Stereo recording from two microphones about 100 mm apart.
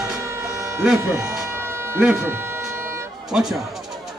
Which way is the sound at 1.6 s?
25° right (ahead or behind).